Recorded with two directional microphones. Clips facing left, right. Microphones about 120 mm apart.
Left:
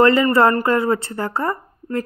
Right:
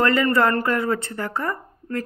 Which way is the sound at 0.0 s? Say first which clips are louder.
Left 5 dB; 25° left (ahead or behind).